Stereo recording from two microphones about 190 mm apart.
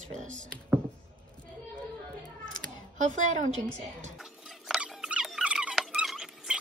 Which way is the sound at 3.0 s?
40° right (ahead or behind).